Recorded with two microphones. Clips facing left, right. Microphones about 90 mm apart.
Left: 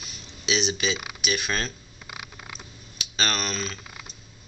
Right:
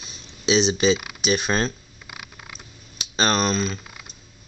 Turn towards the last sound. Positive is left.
turn(degrees=-25)  # may be behind; listen again after turning